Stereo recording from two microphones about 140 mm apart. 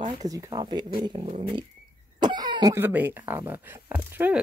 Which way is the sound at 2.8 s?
15° right (ahead or behind).